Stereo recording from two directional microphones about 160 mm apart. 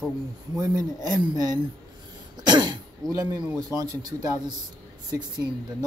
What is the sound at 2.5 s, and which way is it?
Throat clearing, 25° right (ahead or behind).